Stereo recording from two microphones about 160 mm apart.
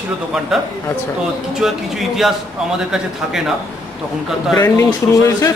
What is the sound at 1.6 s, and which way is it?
A man's voice, centre (ahead or behind).